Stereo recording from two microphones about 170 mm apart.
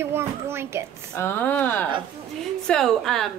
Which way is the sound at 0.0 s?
15° right (ahead or behind).